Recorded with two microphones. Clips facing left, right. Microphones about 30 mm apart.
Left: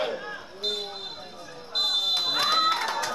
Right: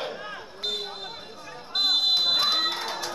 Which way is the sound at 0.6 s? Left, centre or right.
Centre.